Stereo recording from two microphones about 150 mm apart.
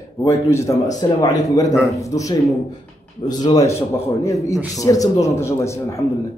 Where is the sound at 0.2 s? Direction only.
20° left (ahead or behind).